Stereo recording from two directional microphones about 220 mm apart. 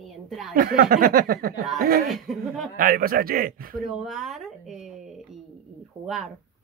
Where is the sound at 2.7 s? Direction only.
40° right (ahead or behind).